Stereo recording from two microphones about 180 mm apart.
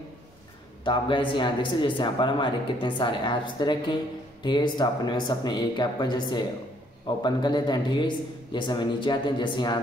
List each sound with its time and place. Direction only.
0.8 s speech: 25° left (ahead or behind)